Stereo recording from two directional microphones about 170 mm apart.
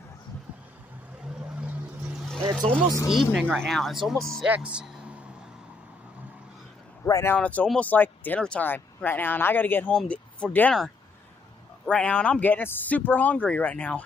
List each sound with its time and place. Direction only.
1.6 s vehicle: 5° right (ahead or behind)
3.1 s speech: centre (ahead or behind)
7.1 s speech: 20° left (ahead or behind)
7.3 s speech: 10° left (ahead or behind)